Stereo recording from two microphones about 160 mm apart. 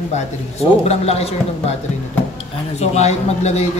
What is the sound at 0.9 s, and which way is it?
Speech, 40° left (ahead or behind).